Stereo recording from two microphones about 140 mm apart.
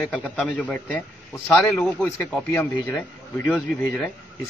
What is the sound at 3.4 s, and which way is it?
Speech, 5° left (ahead or behind).